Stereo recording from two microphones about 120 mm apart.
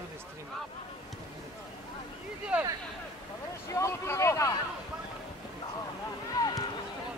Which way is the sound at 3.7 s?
25° left (ahead or behind).